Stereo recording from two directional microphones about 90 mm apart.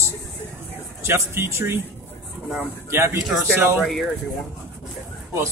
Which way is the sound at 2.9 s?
30° right (ahead or behind).